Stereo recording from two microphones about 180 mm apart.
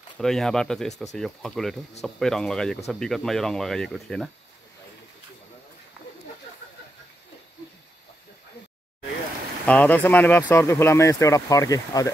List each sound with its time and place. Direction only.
0.2 s speech: 5° left (ahead or behind)
9.7 s speech: 10° left (ahead or behind)